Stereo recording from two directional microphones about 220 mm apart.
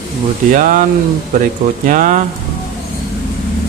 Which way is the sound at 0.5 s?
35° right (ahead or behind).